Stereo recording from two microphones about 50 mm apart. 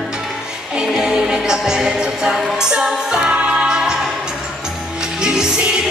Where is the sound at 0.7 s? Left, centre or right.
Centre.